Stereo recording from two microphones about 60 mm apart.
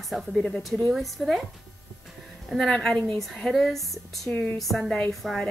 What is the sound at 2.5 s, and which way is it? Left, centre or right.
A woman's voice, centre.